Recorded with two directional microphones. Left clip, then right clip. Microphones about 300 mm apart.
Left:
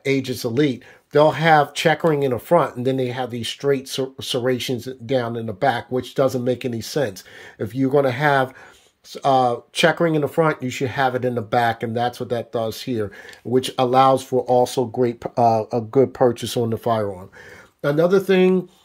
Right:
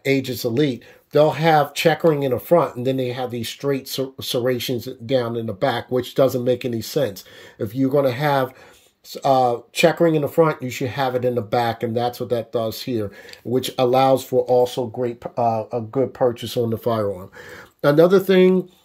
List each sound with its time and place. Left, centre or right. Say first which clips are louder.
0.0 s speech: right 1 dB; centre; by 16.5 s left
16.6 s speech: even; centre